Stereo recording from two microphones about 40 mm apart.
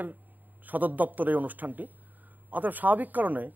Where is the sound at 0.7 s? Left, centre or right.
Right.